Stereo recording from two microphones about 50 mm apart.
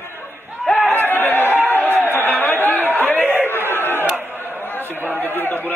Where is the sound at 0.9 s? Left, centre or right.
Left.